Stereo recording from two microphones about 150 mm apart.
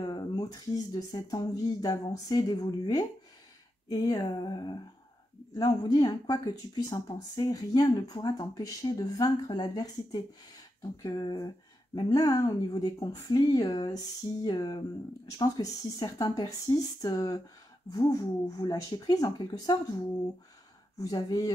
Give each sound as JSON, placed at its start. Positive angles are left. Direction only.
{"t": 0.0, "sound": "speech", "side_deg": 25}